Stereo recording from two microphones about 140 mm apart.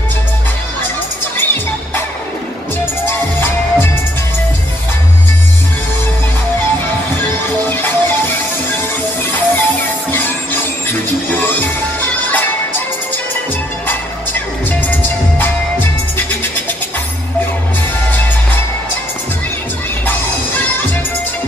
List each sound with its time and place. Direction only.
1.3 s music: 15° left (ahead or behind)
3.1 s music: 15° left (ahead or behind)
7.2 s music: 15° left (ahead or behind)
20.1 s music: 15° left (ahead or behind)